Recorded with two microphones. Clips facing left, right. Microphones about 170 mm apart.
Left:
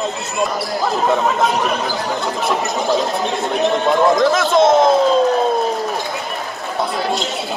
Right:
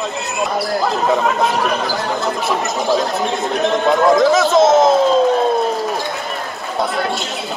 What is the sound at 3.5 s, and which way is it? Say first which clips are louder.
Speech: even; centre (ahead or behind).